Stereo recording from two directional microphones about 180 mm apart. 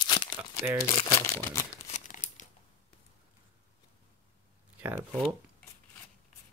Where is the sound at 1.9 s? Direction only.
45° left (ahead or behind).